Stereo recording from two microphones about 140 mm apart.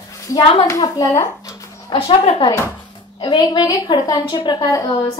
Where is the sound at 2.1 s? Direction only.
45° left (ahead or behind); by 4.8 s 25° left (ahead or behind).